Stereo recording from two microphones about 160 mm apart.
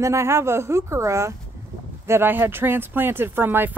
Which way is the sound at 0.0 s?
20° right (ahead or behind).